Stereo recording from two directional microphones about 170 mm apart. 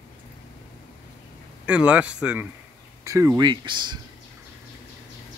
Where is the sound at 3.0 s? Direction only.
20° right (ahead or behind).